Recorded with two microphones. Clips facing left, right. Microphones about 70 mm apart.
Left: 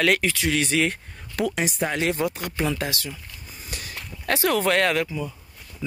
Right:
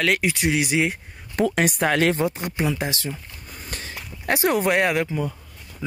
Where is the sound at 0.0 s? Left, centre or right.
Centre.